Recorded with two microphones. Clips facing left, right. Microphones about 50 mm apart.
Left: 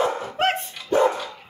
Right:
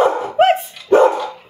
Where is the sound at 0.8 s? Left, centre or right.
Right.